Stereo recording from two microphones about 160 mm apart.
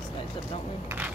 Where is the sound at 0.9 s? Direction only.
15° right (ahead or behind).